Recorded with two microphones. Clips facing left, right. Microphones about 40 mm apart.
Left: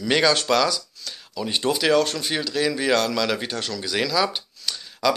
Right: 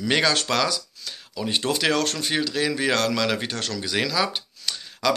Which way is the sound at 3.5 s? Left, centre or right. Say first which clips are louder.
Left 1 dB; right.